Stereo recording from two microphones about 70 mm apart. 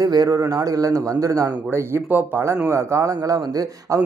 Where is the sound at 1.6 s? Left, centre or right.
Right.